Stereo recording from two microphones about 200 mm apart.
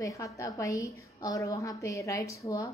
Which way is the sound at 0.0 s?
15° left (ahead or behind).